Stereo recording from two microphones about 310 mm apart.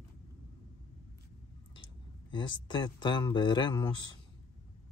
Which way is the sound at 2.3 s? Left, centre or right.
Centre.